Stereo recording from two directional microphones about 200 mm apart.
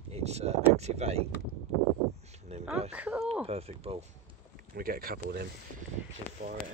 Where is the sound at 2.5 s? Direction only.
30° right (ahead or behind).